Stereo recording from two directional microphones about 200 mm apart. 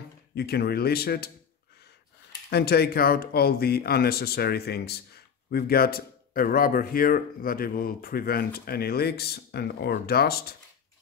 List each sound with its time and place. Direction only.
0.3 s speech: 55° left (ahead or behind)
2.5 s speech: 55° left (ahead or behind)